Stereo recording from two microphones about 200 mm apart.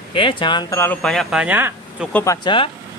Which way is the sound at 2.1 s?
15° left (ahead or behind).